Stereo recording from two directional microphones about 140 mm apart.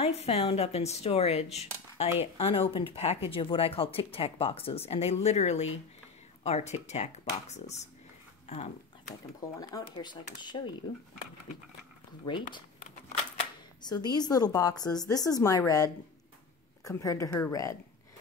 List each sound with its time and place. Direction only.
0.0 s speech: 45° left (ahead or behind)
9.6 s speech: 25° left (ahead or behind)
12.3 s speech: 35° left (ahead or behind)
13.8 s speech: 30° left (ahead or behind)